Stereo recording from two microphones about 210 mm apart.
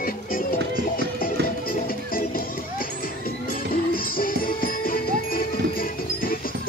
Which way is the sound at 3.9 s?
45° left (ahead or behind).